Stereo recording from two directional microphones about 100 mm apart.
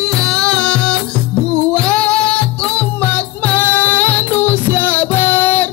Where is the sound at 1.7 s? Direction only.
10° left (ahead or behind).